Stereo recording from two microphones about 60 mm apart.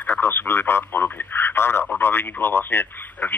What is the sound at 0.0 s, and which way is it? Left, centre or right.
Speech, left.